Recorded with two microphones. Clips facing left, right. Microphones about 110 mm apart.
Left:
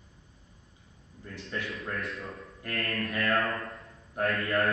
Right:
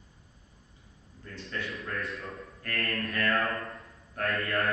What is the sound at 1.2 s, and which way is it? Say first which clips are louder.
Speech: left 1 dB; 20° left (ahead or behind).